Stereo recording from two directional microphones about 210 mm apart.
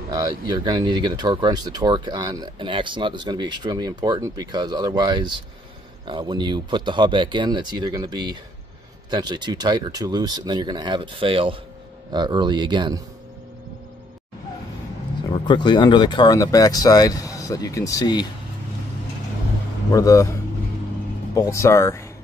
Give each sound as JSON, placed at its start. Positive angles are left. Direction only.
{"t": 0.1, "sound": "speech", "side_deg": -20}
{"t": 15.3, "sound": "speech", "side_deg": 20}
{"t": 19.9, "sound": "speech", "side_deg": 15}
{"t": 21.4, "sound": "speech", "side_deg": 15}